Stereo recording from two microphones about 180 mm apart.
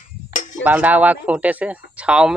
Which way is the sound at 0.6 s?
10° right (ahead or behind).